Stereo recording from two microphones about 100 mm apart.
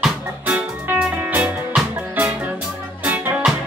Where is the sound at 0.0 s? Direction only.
15° right (ahead or behind).